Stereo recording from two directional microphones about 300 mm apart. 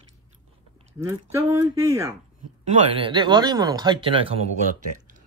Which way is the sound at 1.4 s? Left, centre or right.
Centre.